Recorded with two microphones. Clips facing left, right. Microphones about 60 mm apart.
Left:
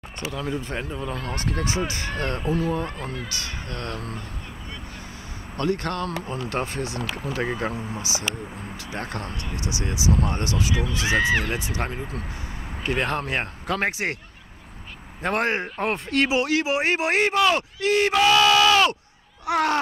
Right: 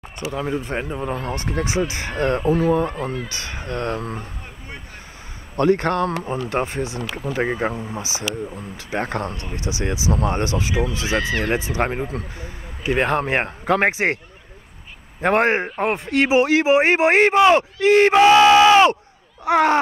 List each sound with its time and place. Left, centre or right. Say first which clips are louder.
0.2 s a man's voice: right 4 dB; right
2.8 s speech: right 7 dB; centre
3.3 s a man's voice: right 3 dB; right
5.6 s a man's voice: right 8 dB; right
11.1 s speech: left 5 dB; left
11.4 s a man's voice: right 7 dB; right
12.9 s a man's voice: right 6 dB; right
15.2 s a man's voice: right 6 dB; right